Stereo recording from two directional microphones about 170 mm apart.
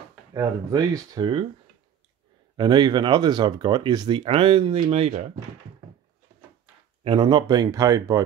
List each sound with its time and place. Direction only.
0.3 s speech: 20° right (ahead or behind)
2.5 s speech: 25° right (ahead or behind)
7.0 s speech: 25° right (ahead or behind)